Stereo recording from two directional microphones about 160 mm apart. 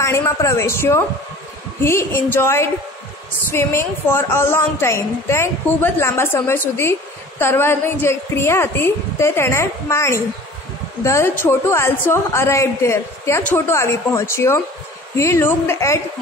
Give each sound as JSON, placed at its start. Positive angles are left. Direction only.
{"t": 0.0, "sound": "a woman's voice", "side_deg": 20}